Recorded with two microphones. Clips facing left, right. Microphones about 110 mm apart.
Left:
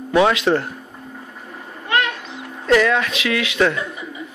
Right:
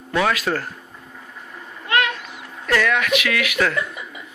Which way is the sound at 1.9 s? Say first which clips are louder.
Even; 25° left (ahead or behind).